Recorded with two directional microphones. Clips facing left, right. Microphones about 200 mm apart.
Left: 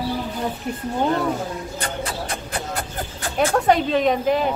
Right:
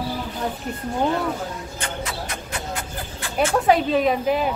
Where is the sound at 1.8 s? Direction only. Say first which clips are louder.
Left 1 dB; 35° left (ahead or behind).